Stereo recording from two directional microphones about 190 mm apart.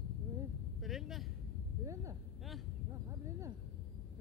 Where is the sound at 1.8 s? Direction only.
15° right (ahead or behind).